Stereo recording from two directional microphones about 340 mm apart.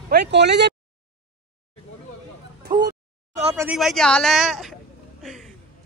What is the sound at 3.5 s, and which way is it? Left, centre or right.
Speech, centre.